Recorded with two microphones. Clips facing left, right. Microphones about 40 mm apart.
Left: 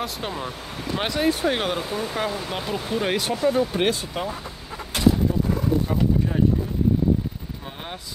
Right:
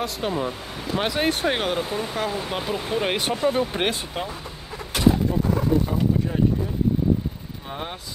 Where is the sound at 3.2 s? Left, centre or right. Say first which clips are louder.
Left 1 dB; right.